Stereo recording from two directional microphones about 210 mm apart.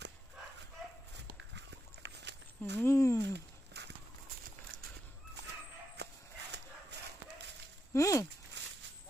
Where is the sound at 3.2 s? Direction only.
55° right (ahead or behind).